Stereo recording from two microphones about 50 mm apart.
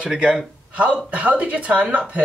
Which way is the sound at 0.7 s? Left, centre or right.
Right.